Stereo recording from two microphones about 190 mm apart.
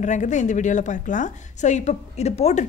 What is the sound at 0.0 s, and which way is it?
A woman's voice, 40° left (ahead or behind).